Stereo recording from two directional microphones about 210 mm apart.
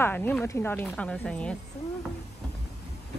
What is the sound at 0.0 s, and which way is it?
A woman's voice, 10° left (ahead or behind).